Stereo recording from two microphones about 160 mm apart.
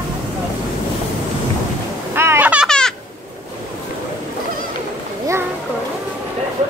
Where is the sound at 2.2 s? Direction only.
15° right (ahead or behind).